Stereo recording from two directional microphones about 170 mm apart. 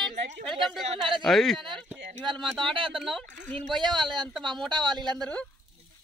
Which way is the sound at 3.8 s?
25° right (ahead or behind).